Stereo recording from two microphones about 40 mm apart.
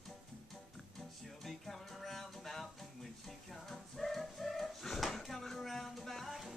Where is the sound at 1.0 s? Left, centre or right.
Centre.